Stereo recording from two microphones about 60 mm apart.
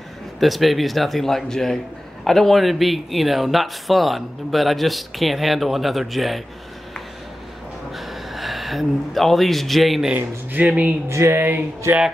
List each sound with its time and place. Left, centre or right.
0.4 s speech: centre
7.9 s speech: centre
10.1 s speech: right
11.1 s speech: right